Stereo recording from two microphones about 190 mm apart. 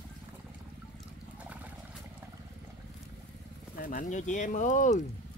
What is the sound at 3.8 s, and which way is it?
Speech, 45° left (ahead or behind).